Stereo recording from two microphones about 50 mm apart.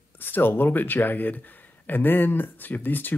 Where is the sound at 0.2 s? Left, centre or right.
Left.